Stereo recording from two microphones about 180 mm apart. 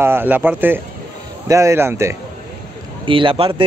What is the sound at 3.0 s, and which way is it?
Speech, 30° right (ahead or behind).